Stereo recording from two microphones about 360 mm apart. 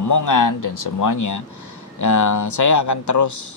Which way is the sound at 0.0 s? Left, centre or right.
Left.